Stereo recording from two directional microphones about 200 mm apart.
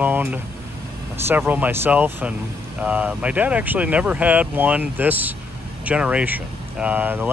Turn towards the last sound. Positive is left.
turn(degrees=-10)  # may be behind; listen again after turning